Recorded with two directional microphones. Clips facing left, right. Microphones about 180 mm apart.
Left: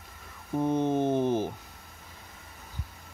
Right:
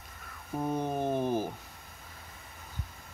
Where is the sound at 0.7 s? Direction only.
20° left (ahead or behind).